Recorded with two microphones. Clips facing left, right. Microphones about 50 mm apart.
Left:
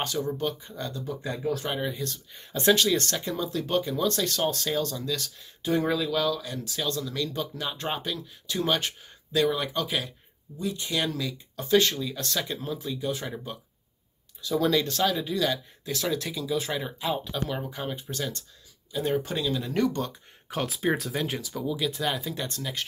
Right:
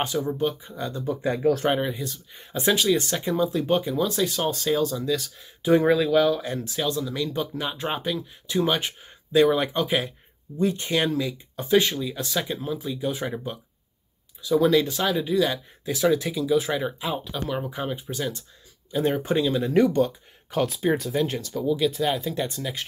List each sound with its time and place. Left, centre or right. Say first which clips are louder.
0.0 s speech: right 4 dB; centre
0.9 s speech: right 10 dB; right
1.4 s speech: right 8 dB; right
1.9 s speech: right 2 dB; centre
5.7 s speech: right 7 dB; right
6.3 s speech: right 5 dB; right
6.9 s speech: right 1 dB; centre; by 11.1 s right
11.1 s speech: right 5 dB; right
14.4 s speech: right 5 dB; centre
18.9 s speech: right 4 dB; right; by 20.2 s centre
20.4 s speech: right 4 dB; centre